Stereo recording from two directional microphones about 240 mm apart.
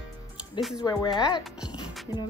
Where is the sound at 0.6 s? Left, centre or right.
Centre.